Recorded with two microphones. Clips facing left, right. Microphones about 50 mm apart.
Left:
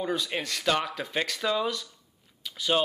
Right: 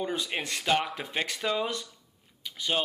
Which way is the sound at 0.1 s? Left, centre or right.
Centre.